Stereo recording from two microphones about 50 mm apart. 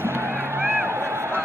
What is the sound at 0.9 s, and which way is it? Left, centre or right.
Music, right.